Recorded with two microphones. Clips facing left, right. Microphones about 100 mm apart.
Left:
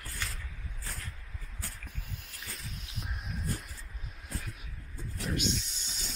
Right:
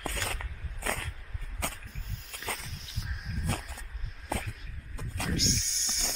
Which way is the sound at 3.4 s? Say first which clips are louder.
Right 5 dB; 70° right (ahead or behind).